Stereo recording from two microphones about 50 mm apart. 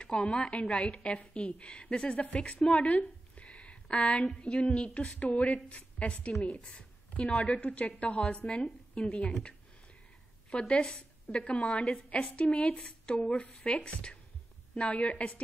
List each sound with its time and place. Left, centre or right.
0.0 s a woman's voice: left
3.3 s a sound: left
4.4 s a woman's voice: left
7.3 s a woman's voice: left
10.6 s a woman's voice: centre